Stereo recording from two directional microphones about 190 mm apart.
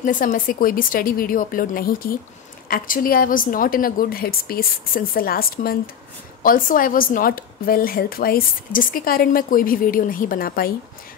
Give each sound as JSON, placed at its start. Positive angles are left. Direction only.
{"t": 0.0, "sound": "a woman's voice", "side_deg": 45}